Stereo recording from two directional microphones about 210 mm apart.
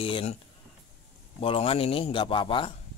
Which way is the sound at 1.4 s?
25° left (ahead or behind).